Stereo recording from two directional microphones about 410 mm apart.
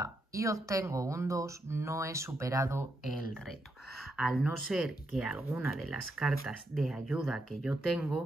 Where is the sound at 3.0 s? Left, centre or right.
Left.